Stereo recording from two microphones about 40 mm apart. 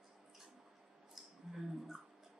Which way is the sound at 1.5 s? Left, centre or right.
Centre.